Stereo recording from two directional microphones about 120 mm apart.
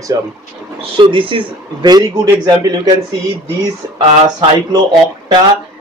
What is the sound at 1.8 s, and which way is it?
Speech, 35° right (ahead or behind).